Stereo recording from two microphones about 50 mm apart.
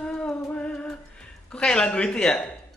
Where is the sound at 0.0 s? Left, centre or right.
Left.